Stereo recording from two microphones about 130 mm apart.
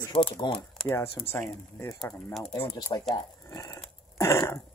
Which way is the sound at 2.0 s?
10° left (ahead or behind).